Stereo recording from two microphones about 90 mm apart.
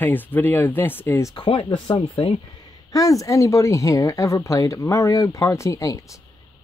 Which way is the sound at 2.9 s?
40° left (ahead or behind).